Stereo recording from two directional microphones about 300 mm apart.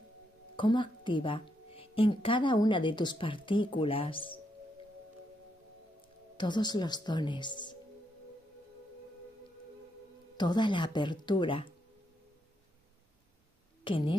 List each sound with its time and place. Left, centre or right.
0.6 s a woman's voice: centre
6.3 s a woman's voice: centre
10.3 s a woman's voice: centre
13.8 s speech: centre